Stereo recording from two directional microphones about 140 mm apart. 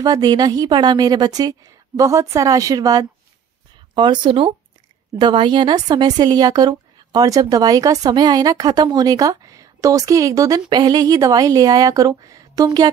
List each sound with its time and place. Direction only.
0.0 s speech: 25° right (ahead or behind)